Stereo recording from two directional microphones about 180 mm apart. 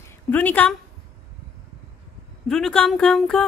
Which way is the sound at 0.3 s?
10° left (ahead or behind).